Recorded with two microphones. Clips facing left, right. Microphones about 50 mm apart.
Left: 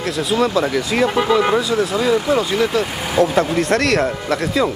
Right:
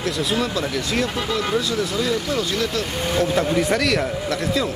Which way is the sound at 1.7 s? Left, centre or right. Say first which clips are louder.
Left 6 dB; centre.